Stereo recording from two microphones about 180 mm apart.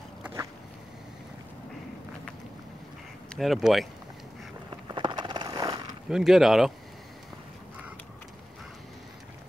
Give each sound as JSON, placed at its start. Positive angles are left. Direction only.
{"t": 3.3, "sound": "speech", "side_deg": 0}
{"t": 4.8, "sound": "a sound", "side_deg": -25}
{"t": 6.0, "sound": "speech", "side_deg": 0}